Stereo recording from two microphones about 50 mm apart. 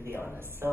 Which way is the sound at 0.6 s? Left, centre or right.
Right.